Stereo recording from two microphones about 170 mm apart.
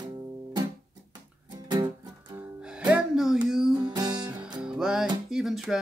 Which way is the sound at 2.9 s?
5° right (ahead or behind).